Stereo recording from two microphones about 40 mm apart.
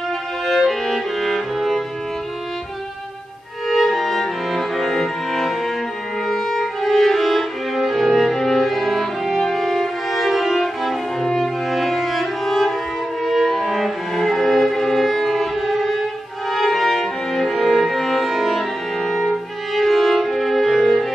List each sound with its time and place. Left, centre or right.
0.5 s music: centre
3.6 s music: centre
6.6 s cello: centre
8.4 s music: centre
13.2 s violin: centre
13.7 s cello: centre
14.1 s violin: centre
16.4 s music: centre